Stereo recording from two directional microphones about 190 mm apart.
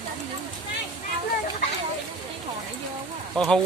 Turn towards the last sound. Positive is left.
turn(degrees=5)  # may be behind; listen again after turning